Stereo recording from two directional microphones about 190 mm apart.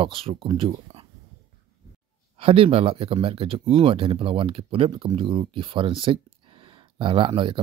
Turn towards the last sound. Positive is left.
turn(degrees=-25)  # may be behind; listen again after turning